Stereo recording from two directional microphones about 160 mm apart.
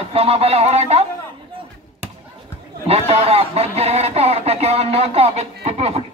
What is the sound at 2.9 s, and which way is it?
Speech, 40° right (ahead or behind).